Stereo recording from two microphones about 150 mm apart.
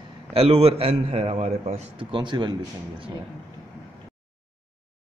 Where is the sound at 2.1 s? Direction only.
30° right (ahead or behind).